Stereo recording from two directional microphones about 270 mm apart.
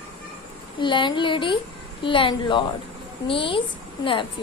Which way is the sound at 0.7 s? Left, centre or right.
Centre.